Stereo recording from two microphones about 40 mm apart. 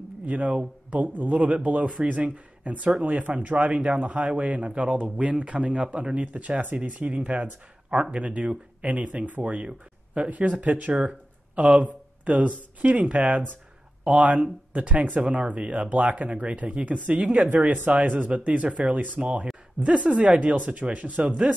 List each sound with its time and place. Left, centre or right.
0.3 s speech: right
7.9 s speech: right
8.2 s speech: right
10.3 s speech: right